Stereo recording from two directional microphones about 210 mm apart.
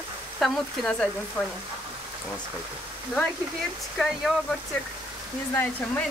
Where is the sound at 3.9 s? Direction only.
Centre (ahead or behind).